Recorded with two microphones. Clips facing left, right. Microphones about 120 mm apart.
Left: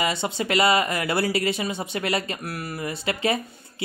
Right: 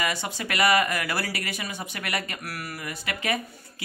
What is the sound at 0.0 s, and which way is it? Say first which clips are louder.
Speech: left 4 dB; 25° left (ahead or behind).